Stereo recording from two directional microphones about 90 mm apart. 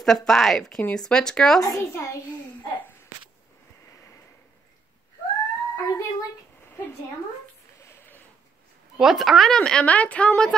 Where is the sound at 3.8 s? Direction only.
35° left (ahead or behind).